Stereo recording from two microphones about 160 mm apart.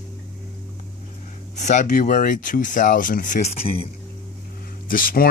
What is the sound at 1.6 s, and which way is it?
Speech, 50° left (ahead or behind).